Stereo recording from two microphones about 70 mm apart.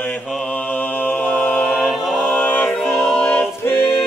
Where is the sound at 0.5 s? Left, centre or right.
Centre.